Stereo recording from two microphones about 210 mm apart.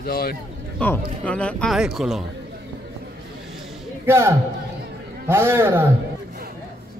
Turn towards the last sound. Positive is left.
turn(degrees=-10)  # may be behind; listen again after turning